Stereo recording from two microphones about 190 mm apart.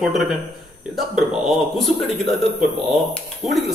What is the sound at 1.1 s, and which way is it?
A man's voice, centre (ahead or behind).